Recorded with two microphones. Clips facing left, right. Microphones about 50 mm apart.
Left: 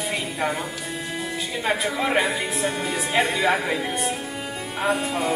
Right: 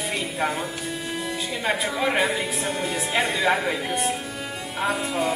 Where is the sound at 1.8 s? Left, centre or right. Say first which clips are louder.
Even; centre.